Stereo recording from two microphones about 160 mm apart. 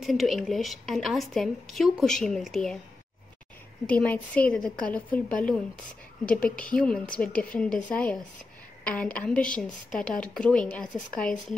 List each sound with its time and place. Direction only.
0.0 s speech: centre (ahead or behind)
3.8 s a woman's voice: 10° left (ahead or behind)